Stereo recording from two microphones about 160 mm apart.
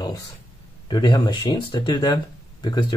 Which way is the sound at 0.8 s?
25° left (ahead or behind).